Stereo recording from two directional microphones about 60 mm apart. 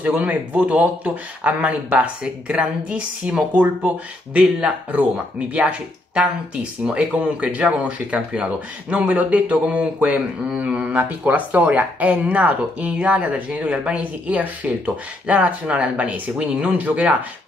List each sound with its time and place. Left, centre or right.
0.0 s speech: right